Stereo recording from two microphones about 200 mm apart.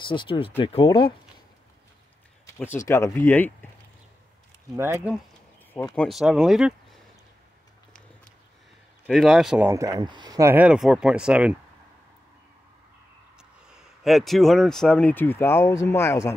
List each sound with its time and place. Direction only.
0.1 s speech: 25° left (ahead or behind)
2.4 s speech: 15° left (ahead or behind)
4.7 s speech: 15° right (ahead or behind)
5.9 s speech: centre (ahead or behind)
9.0 s speech: centre (ahead or behind)
9.7 s speech: 15° right (ahead or behind)
13.4 s speech: 5° right (ahead or behind); by 16.3 s 15° left (ahead or behind)